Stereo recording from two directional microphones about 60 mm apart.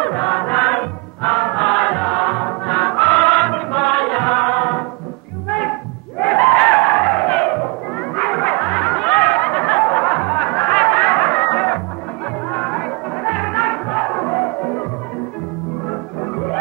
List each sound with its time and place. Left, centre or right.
0.0 s choir: left
5.5 s a sound: left
8.2 s snicker: left
10.1 s music: left
15.9 s music: left